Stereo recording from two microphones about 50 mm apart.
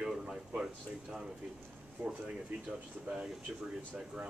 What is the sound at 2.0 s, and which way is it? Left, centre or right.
Speech, right.